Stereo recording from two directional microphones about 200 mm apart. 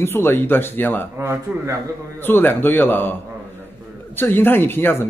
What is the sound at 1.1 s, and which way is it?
Speech, 15° right (ahead or behind).